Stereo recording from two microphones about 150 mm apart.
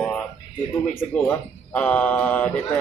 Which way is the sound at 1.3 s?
10° left (ahead or behind).